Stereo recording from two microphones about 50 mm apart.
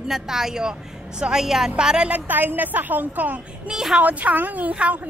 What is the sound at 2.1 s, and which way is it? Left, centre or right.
A woman's voice, right.